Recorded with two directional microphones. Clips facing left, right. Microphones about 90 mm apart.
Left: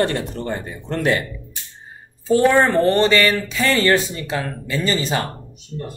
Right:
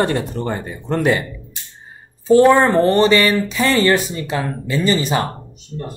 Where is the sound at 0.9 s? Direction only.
15° right (ahead or behind).